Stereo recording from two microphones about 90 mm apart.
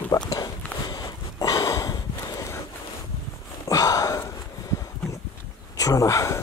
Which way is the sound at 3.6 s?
40° left (ahead or behind).